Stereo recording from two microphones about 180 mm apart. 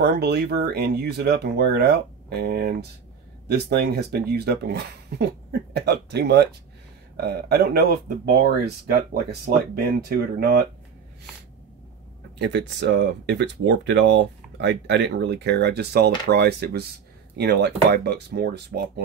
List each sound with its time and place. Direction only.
0.0 s speech: 65° right (ahead or behind)
12.4 s speech: 70° right (ahead or behind)